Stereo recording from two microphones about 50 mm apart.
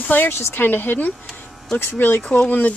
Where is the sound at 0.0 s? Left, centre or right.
Left.